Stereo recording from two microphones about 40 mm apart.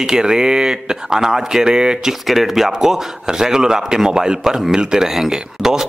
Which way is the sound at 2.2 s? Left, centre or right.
Centre.